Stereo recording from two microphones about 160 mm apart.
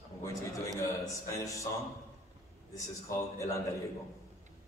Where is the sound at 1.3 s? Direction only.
20° left (ahead or behind).